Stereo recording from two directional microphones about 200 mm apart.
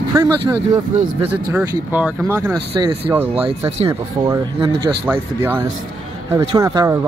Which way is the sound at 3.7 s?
30° right (ahead or behind).